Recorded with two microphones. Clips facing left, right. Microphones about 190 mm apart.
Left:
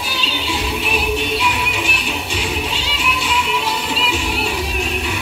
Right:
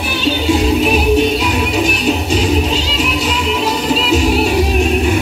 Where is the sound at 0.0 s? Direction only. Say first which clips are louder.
Right 9 dB; 55° right (ahead or behind); by 4.6 s 40° right (ahead or behind).